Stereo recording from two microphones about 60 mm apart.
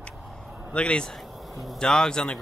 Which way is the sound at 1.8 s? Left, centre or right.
Centre.